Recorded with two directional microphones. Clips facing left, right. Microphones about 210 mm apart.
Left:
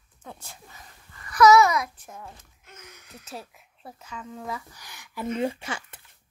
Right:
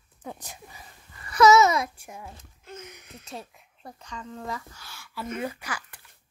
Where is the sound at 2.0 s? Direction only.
10° right (ahead or behind).